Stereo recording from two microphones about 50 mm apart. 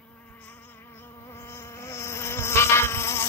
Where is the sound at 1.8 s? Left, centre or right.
Left.